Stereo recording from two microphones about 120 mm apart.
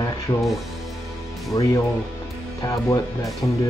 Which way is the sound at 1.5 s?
35° left (ahead or behind).